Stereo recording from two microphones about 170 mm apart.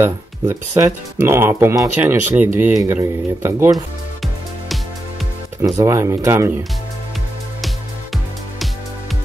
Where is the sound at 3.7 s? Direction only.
Centre (ahead or behind).